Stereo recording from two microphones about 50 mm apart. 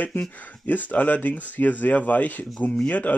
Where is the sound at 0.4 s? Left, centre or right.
Left.